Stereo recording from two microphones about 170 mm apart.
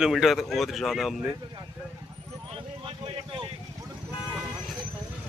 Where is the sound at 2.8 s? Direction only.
30° right (ahead or behind).